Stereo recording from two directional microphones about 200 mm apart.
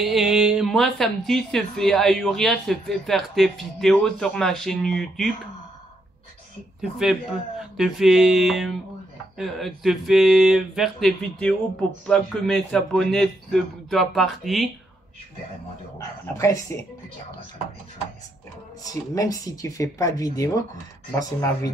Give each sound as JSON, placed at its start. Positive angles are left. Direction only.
{"t": 0.0, "sound": "speech", "side_deg": 0}
{"t": 6.8, "sound": "speech", "side_deg": 0}
{"t": 16.3, "sound": "speech", "side_deg": 15}
{"t": 18.9, "sound": "speech", "side_deg": 15}